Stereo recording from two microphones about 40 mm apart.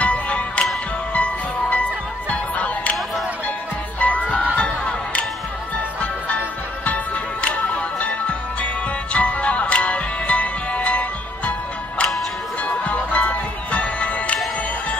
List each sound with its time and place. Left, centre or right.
0.0 s music: left
4.0 s music: left
4.6 s a sound: left
5.9 s music: left
12.6 s music: left